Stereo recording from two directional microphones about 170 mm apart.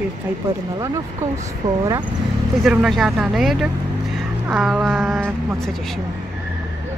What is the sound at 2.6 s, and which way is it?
A woman's voice, 5° right (ahead or behind).